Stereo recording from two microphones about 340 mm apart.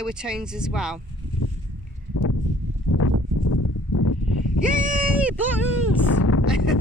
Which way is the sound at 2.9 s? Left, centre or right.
Left.